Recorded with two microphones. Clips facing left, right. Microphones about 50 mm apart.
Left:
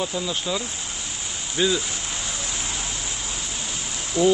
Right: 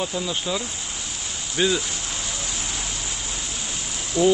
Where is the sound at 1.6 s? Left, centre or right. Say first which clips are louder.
Even; centre.